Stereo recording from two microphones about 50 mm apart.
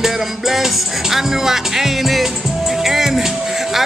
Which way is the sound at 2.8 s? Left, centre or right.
Centre.